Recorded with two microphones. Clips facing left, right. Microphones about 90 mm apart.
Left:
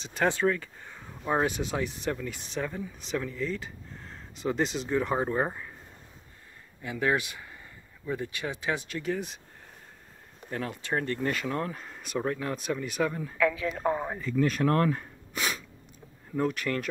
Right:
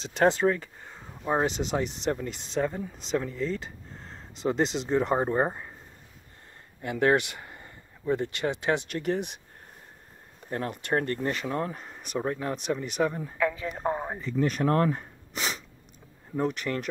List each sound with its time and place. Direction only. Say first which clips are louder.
0.0 s speech: right 3 dB; 35° right (ahead or behind)
2.5 s speech: right 6 dB; 35° right (ahead or behind)
6.8 s speech: right 4 dB; 55° right (ahead or behind)
11.0 s speech: right 1 dB; 40° right (ahead or behind)
11.2 s speech: right 1 dB; 25° right (ahead or behind)